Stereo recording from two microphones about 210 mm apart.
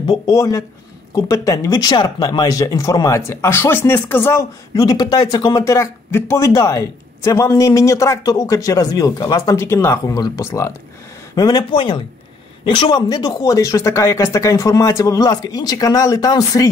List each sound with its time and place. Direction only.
0.0 s speech: 20° left (ahead or behind)